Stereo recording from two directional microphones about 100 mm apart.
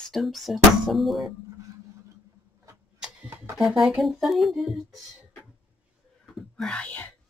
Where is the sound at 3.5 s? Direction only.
Centre (ahead or behind).